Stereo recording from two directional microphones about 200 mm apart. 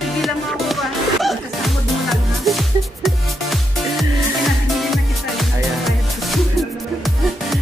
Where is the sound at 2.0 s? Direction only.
Centre (ahead or behind).